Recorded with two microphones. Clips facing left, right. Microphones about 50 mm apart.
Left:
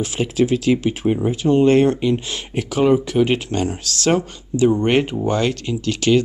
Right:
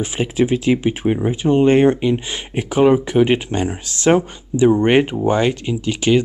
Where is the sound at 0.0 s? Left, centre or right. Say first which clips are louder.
Right 1 dB; right.